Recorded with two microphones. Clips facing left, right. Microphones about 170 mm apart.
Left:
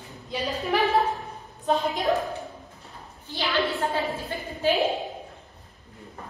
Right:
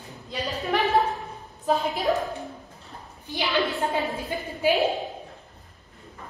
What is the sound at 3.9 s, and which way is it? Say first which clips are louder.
Speech: right 1 dB; 15° right (ahead or behind).